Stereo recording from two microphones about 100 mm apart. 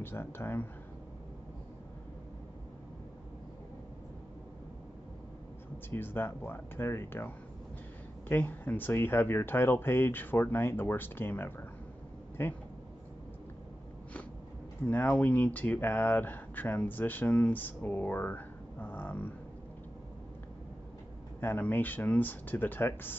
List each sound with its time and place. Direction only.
0.0 s speech: 25° left (ahead or behind)
5.9 s speech: 20° left (ahead or behind)
14.9 s speech: 20° left (ahead or behind)
21.4 s speech: 20° left (ahead or behind)